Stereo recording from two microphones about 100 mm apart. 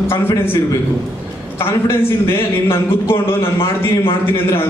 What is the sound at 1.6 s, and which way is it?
Speech, 25° left (ahead or behind).